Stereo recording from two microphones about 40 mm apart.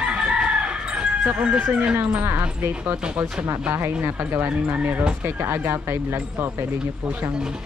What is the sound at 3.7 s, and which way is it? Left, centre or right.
Speech, right.